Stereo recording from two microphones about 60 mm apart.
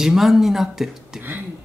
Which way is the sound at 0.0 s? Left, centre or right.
Centre.